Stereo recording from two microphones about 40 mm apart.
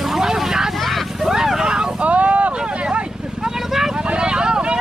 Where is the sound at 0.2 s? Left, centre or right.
Centre.